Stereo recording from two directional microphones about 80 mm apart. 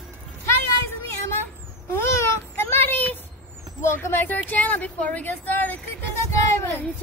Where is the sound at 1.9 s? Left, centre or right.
Left.